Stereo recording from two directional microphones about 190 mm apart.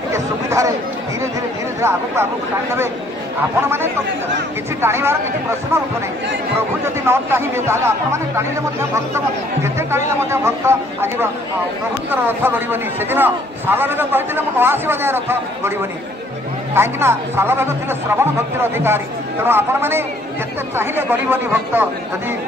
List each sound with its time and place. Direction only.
0.1 s chatter: 15° right (ahead or behind)
1.8 s a man's voice: 15° right (ahead or behind)
4.8 s a man's voice: 15° right (ahead or behind)
7.1 s a man's voice: 10° right (ahead or behind)
9.6 s a man's voice: 15° right (ahead or behind)
16.7 s a man's voice: 15° right (ahead or behind)